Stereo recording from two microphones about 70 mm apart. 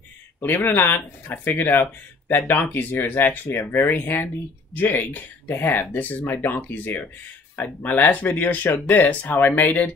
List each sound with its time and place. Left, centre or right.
0.4 s speech: left